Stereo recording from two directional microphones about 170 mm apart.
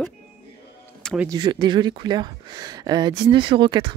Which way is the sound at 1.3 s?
25° right (ahead or behind).